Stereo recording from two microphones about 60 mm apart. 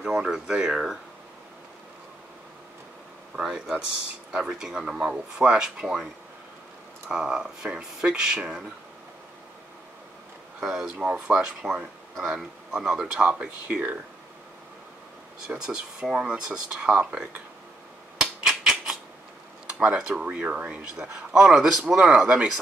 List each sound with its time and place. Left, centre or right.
0.0 s speech: centre
3.3 s speech: centre
7.1 s speech: centre
10.6 s speech: centre
12.2 s speech: centre
13.2 s speech: right
15.4 s speech: centre
18.1 s a sound: centre
19.8 s speech: centre